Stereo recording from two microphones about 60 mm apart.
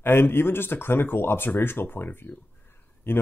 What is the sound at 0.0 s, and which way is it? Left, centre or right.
Speech, left.